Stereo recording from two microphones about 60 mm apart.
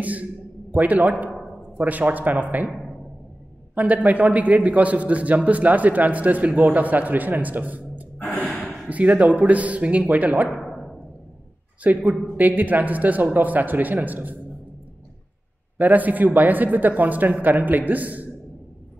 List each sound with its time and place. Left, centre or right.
0.0 s a man's voice: right
3.7 s a man's voice: right
8.2 s gasp: left
8.8 s a man's voice: right
10.5 s timpani: centre
11.8 s a man's voice: right
15.8 s a man's voice: right